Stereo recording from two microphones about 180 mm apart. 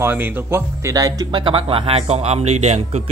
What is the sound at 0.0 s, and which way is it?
Speech, 10° right (ahead or behind).